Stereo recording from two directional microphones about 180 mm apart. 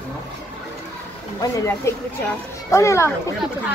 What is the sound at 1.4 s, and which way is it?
Speech, 15° left (ahead or behind).